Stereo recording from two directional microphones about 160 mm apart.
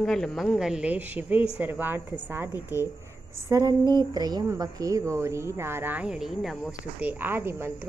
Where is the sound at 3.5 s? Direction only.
20° right (ahead or behind).